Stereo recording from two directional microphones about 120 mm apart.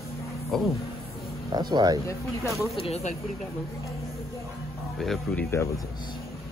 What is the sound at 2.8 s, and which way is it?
Speech, 60° left (ahead or behind).